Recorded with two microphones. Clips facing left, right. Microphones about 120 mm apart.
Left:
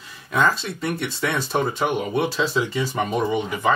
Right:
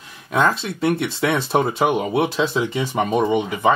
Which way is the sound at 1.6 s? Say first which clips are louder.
Right 2 dB; 5° right (ahead or behind).